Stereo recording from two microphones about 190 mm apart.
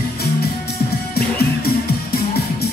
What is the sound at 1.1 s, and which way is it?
Music, 55° left (ahead or behind).